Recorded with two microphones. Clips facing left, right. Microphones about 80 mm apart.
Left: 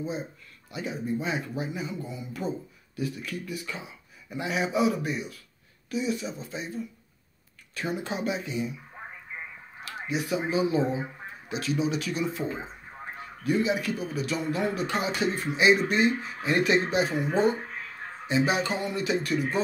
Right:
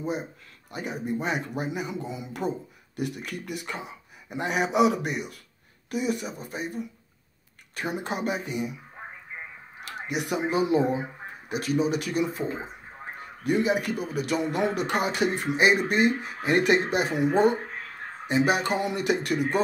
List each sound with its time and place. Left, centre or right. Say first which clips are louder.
0.7 s speech: even; right
7.9 s speech: right 1 dB; right
10.0 s speech: right 1 dB; right
11.4 s speech: right 3 dB; right